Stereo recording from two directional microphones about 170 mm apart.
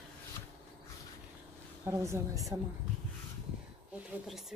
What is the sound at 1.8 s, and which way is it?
Speech, 15° right (ahead or behind).